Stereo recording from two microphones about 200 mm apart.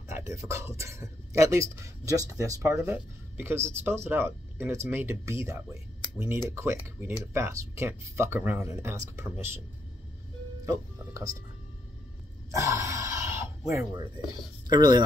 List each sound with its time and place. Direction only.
0.1 s speech: 15° right (ahead or behind)
10.6 s music: 15° right (ahead or behind)
12.4 s a sound: 15° right (ahead or behind)
14.7 s speech: 20° right (ahead or behind)